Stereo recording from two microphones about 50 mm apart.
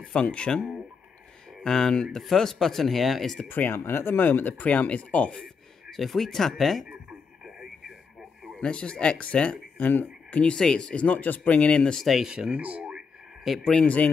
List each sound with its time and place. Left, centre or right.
0.1 s speech: left; by 3.3 s centre
3.4 s speech: left
4.2 s speech: left
5.4 s speech: centre
8.5 s speech: left
9.8 s speech: left
10.4 s speech: centre
11.9 s speech: centre
12.3 s speech: centre
12.5 s speech: right
13.7 s speech: left